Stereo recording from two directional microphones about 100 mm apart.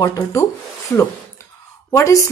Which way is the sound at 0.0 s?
35° left (ahead or behind).